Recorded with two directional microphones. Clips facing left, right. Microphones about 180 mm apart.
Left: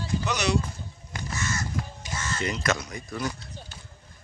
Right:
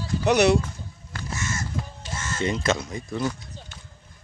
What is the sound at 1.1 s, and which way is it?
Crow, 15° left (ahead or behind).